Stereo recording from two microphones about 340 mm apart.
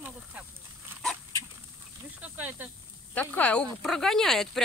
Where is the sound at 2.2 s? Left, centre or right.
Centre.